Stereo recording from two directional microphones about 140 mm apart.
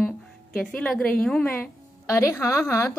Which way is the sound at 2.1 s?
20° left (ahead or behind).